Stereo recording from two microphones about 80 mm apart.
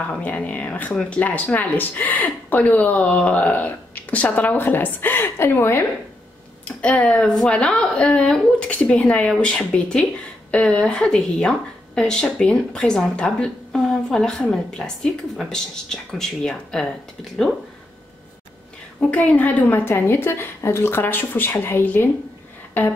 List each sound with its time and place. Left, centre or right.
0.2 s speech: centre
6.6 s a woman's voice: centre
18.9 s speech: centre